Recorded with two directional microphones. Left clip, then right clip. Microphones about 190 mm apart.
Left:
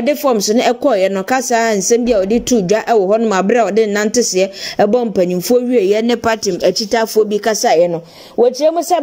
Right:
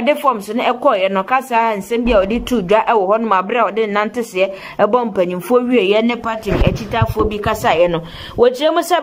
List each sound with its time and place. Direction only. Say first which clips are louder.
0.0 s speech: left 1 dB; 25° left (ahead or behind)
8.4 s speech: left 1 dB; 15° left (ahead or behind)